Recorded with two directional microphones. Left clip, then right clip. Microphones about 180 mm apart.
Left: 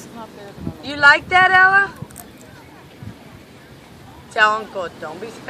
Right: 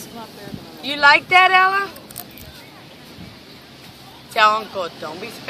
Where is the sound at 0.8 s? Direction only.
45° right (ahead or behind).